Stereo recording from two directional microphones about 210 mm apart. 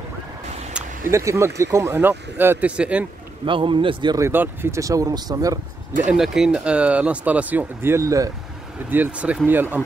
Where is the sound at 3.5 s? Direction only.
25° right (ahead or behind).